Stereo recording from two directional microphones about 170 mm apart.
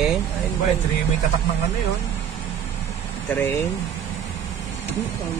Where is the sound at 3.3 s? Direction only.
10° left (ahead or behind).